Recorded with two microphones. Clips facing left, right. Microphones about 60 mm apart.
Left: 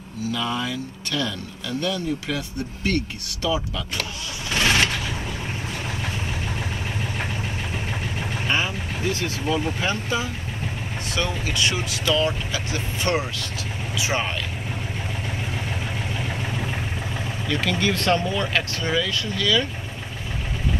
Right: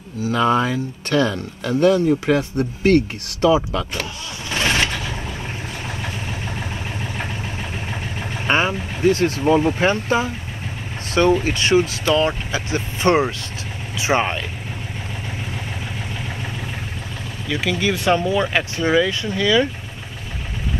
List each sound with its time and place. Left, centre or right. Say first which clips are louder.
0.3 s speech: right 9 dB; right
8.5 s speech: right 7 dB; right
17.5 s speech: right 3 dB; centre; by 19.7 s right